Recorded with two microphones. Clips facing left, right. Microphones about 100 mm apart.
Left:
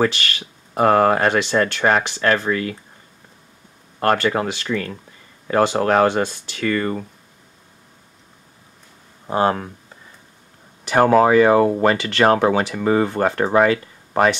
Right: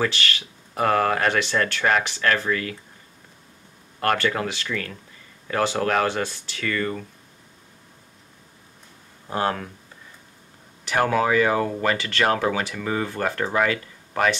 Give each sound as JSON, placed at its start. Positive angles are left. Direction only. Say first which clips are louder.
{"t": 0.7, "sound": "speech", "louder": "left 6 dB", "side_deg": 30}
{"t": 4.0, "sound": "speech", "louder": "left 4 dB", "side_deg": 30}
{"t": 9.3, "sound": "speech", "louder": "left 6 dB", "side_deg": 25}
{"t": 11.0, "sound": "speech", "louder": "left 7 dB", "side_deg": 35}
{"t": 12.0, "sound": "speech", "louder": "left 6 dB", "side_deg": 20}